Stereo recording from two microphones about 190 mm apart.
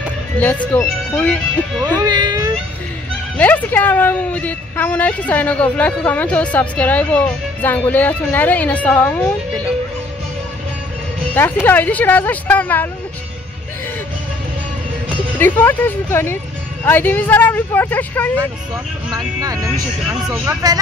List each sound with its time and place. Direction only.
0.4 s a woman's voice: 10° left (ahead or behind)
2.0 s baby cry: 20° right (ahead or behind)
3.3 s a woman's voice: 10° left (ahead or behind)
11.6 s a woman's voice: 10° left (ahead or behind)
15.3 s a woman's voice: 10° left (ahead or behind)
19.0 s speech: 20° right (ahead or behind)